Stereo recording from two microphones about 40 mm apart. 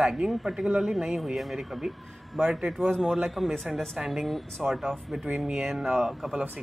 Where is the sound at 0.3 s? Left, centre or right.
Centre.